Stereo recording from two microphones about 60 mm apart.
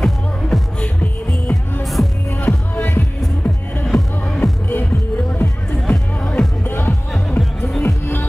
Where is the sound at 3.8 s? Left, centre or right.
Centre.